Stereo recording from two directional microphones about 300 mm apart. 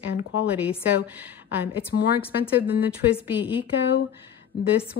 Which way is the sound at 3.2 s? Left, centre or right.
Centre.